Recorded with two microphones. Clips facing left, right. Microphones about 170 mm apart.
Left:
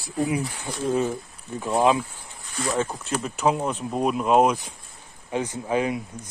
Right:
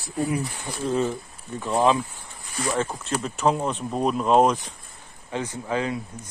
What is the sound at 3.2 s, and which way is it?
Speech, 5° left (ahead or behind).